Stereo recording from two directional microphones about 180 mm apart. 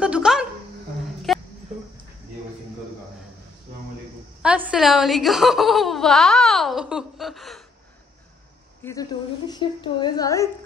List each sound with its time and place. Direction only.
0.0 s a sound: 5° right (ahead or behind)
4.4 s speech: 5° right (ahead or behind)
8.8 s speech: 10° left (ahead or behind)
9.5 s a woman's voice: 25° left (ahead or behind)